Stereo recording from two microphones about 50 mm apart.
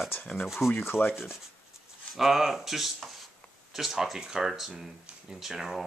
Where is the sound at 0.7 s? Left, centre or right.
Left.